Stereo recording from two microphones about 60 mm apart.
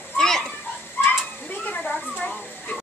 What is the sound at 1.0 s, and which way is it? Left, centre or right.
Children playing, left.